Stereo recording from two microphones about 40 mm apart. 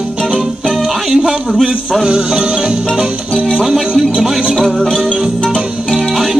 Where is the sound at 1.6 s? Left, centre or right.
Centre.